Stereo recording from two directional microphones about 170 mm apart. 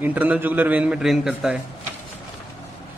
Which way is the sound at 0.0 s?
10° right (ahead or behind).